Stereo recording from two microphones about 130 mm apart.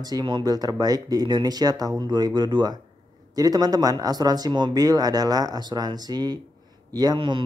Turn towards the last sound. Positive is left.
turn(degrees=-40)  # may be behind; listen again after turning